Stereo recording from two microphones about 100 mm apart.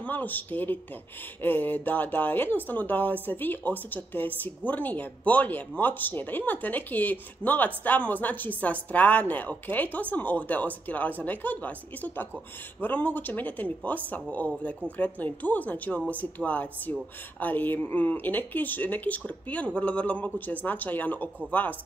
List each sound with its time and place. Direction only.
0.0 s speech: 15° left (ahead or behind)